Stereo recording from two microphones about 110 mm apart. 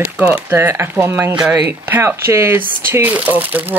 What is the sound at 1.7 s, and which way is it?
Speech, 20° right (ahead or behind).